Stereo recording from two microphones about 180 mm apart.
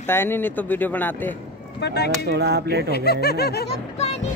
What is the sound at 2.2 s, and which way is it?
Speech, 70° right (ahead or behind).